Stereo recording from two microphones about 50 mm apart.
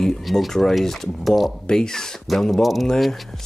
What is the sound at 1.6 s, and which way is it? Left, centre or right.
Speech, centre.